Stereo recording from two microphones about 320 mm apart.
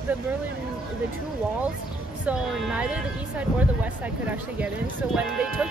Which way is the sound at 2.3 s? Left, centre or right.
Centre.